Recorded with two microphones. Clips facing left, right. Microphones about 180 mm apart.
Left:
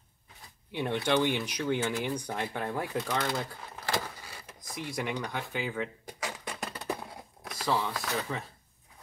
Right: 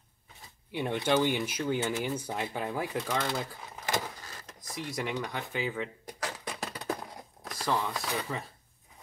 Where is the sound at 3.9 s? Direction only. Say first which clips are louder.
Even; 20° right (ahead or behind).